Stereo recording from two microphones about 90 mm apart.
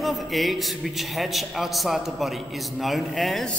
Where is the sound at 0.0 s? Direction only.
Centre (ahead or behind).